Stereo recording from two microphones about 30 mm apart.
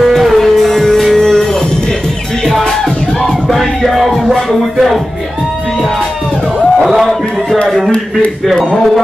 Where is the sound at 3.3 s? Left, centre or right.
Centre.